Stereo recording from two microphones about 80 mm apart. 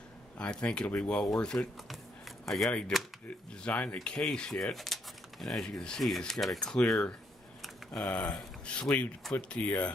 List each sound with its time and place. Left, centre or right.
0.4 s speech: centre
1.9 s a sound: centre
2.9 s speech: centre
3.6 s speech: centre